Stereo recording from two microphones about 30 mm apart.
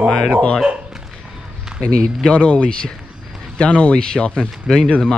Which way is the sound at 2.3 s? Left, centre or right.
Left.